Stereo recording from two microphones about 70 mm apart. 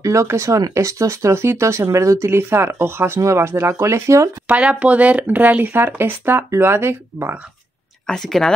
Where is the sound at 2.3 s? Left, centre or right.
Right.